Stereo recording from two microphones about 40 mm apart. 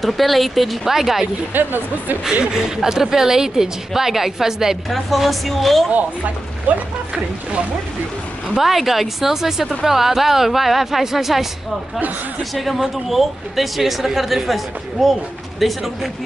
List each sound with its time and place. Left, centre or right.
0.0 s speech: centre
1.5 s speech: right
2.5 s a woman's voice: centre
4.8 s speech: centre
5.9 s speech: right
8.5 s a woman's voice: centre
12.5 s speech: centre